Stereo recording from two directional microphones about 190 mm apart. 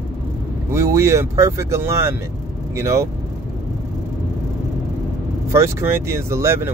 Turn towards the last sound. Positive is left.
turn(degrees=-15)  # may be behind; listen again after turning